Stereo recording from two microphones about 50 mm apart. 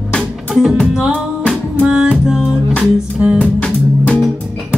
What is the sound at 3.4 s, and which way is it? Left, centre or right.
Music, centre.